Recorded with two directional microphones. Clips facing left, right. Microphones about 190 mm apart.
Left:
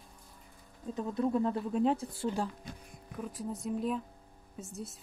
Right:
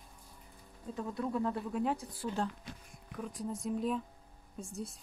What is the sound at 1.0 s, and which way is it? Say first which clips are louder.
Speech: left 5 dB; 20° left (ahead or behind).